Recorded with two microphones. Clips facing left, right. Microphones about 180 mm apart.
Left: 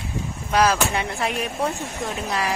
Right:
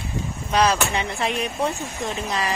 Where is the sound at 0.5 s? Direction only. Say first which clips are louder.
Left 1 dB; 5° left (ahead or behind).